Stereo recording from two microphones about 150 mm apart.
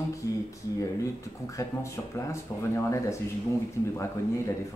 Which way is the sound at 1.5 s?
20° left (ahead or behind).